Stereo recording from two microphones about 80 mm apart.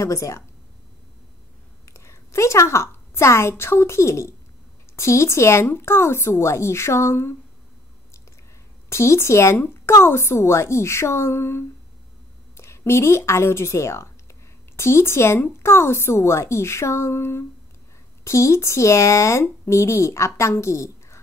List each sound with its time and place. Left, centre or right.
0.0 s speech: left
1.9 s a woman's voice: left
8.8 s speech: left